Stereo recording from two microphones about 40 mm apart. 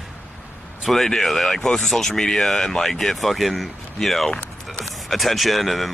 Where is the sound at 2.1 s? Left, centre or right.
Centre.